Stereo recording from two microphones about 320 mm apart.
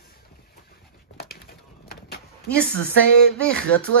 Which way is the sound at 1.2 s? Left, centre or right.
Left.